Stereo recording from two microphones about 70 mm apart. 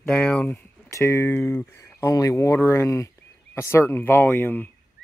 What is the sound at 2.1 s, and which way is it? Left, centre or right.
Speech, left.